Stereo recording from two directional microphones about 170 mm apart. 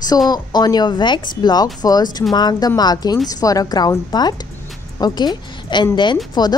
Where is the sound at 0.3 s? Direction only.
25° left (ahead or behind).